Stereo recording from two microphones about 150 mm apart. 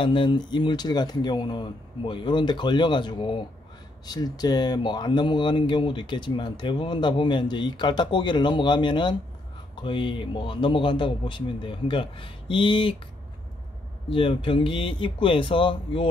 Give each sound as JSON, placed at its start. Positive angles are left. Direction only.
{"t": 0.0, "sound": "speech", "side_deg": 35}
{"t": 14.1, "sound": "speech", "side_deg": 35}